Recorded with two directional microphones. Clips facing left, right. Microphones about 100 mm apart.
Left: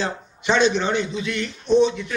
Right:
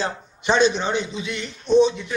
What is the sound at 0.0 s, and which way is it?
Speech, 35° right (ahead or behind).